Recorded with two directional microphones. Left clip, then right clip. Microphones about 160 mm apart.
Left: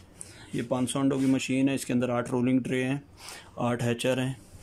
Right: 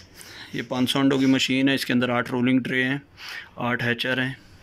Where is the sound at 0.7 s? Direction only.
10° left (ahead or behind).